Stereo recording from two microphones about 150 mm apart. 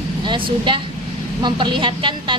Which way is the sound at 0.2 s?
30° right (ahead or behind).